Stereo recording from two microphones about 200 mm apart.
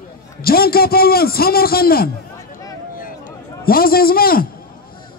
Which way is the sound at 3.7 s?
45° left (ahead or behind).